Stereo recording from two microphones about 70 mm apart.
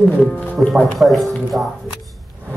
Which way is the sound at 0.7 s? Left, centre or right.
Centre.